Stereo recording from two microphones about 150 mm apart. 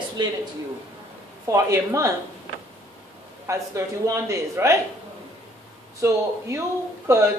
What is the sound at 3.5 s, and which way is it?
Speech, 20° right (ahead or behind).